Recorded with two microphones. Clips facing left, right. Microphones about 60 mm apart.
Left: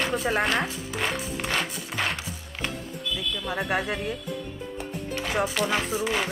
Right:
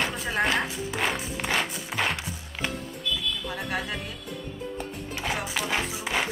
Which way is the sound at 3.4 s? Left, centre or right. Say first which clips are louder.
Left 4 dB; left.